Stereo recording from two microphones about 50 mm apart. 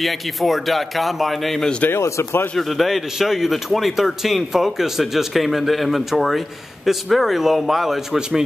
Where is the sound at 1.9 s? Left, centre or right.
Left.